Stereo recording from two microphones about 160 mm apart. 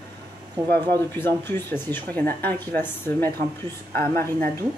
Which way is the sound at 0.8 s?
15° left (ahead or behind).